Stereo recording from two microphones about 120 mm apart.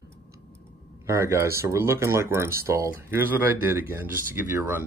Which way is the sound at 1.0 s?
25° right (ahead or behind).